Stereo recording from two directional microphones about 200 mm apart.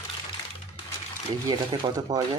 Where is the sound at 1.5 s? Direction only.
20° right (ahead or behind).